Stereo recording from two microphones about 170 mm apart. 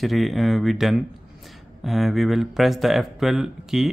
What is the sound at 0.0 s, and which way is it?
Speech, centre (ahead or behind).